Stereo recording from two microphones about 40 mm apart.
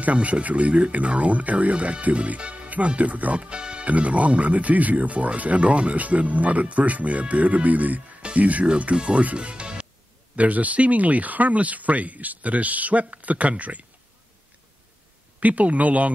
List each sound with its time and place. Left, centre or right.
0.0 s speech: right
3.8 s speech: right
8.2 s music: right
8.6 s speech: right
10.3 s speech: right
15.4 s speech: right